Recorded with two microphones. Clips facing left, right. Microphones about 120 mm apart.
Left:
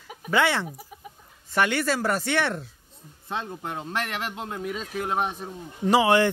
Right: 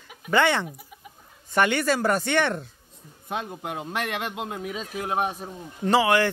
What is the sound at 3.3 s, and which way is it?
Speech, 10° right (ahead or behind).